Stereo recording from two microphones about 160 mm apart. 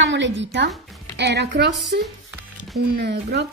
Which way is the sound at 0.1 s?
90° right.